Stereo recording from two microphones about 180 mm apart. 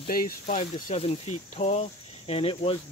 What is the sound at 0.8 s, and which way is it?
Speech, 35° left (ahead or behind).